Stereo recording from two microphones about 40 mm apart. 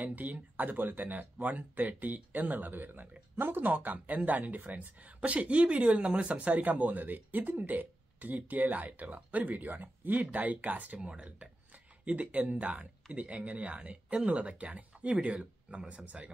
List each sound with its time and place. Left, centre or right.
0.0 s a woman's voice: right
3.6 s a woman's voice: right
11.0 s speech: right
12.0 s speech: right